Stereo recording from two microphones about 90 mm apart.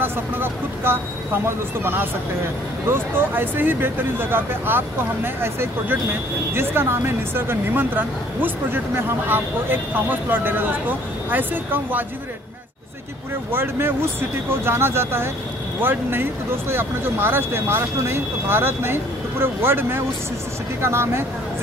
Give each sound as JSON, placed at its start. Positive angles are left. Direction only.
{"t": 0.0, "sound": "speech", "side_deg": -25}
{"t": 13.5, "sound": "speech", "side_deg": -25}